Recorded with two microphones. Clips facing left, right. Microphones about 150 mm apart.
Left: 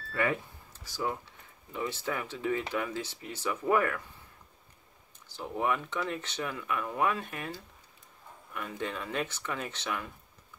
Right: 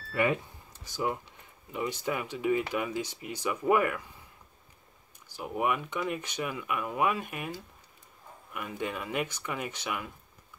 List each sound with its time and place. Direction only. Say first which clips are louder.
0.1 s speech: right 3 dB; 15° right (ahead or behind)
5.3 s speech: right 1 dB; 15° right (ahead or behind)
8.5 s speech: right 1 dB; 10° right (ahead or behind)